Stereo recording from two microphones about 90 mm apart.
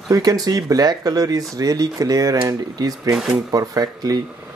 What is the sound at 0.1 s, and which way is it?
Speech, 45° right (ahead or behind).